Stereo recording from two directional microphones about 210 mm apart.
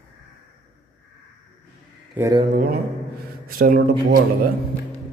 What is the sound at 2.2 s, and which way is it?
Speech, 15° right (ahead or behind).